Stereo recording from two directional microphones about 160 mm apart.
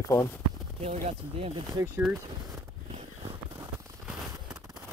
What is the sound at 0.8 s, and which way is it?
Speech, 45° right (ahead or behind).